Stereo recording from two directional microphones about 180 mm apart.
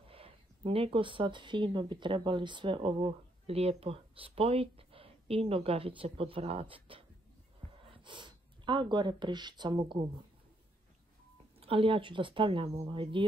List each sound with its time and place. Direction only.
0.1 s speech: 30° right (ahead or behind)
11.6 s speech: 30° right (ahead or behind)